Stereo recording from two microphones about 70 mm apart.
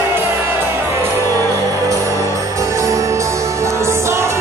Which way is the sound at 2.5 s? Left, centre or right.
Right.